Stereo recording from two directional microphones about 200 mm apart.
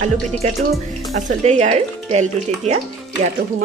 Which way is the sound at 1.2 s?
35° right (ahead or behind).